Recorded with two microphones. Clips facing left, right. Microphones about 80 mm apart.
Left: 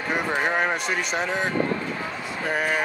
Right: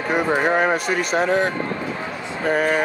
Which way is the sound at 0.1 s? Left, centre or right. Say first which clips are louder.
Right 5 dB; centre.